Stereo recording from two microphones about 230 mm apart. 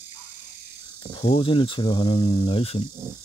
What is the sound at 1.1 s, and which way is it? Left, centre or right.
Speech, left.